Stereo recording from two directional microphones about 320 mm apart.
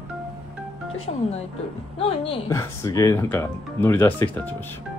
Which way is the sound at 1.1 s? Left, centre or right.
Left.